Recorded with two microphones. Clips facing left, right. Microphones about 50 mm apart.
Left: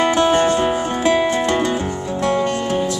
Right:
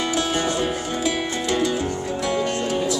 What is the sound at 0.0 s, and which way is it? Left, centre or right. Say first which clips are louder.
Music: left 8 dB; left.